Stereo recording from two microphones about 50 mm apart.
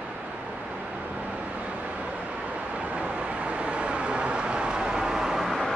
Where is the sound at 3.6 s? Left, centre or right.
Right; by 5.6 s centre.